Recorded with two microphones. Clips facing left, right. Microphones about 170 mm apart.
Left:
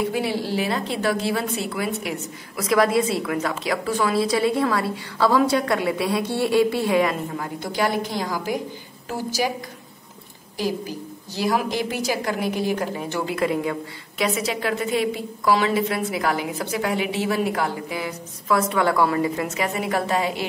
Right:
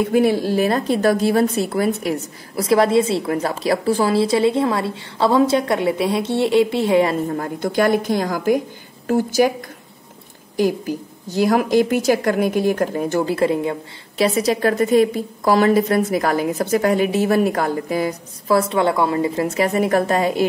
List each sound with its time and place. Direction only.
0.1 s a woman's voice: 50° right (ahead or behind); by 7.2 s 25° right (ahead or behind)
7.2 s a woman's voice: 50° right (ahead or behind)
10.6 s a woman's voice: 50° right (ahead or behind)